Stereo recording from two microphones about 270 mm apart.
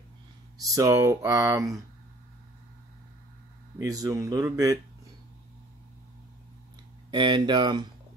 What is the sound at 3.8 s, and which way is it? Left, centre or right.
Speech, centre.